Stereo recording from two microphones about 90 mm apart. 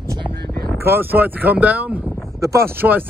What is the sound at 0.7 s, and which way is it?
Speech, 25° right (ahead or behind).